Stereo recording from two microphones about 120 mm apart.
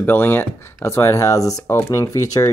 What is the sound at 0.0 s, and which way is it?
Speech, 15° left (ahead or behind).